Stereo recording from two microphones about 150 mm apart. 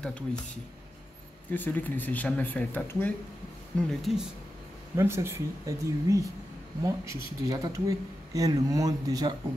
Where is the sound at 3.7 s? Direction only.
Centre (ahead or behind).